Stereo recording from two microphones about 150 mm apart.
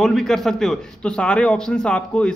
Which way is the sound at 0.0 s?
Centre (ahead or behind).